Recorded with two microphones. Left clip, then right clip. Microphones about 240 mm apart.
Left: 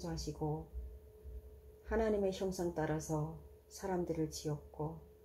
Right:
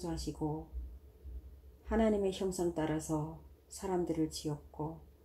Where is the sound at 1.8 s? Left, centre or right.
Right.